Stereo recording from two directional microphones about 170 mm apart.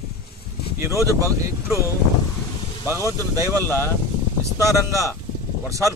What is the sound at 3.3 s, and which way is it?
Speech, 20° right (ahead or behind).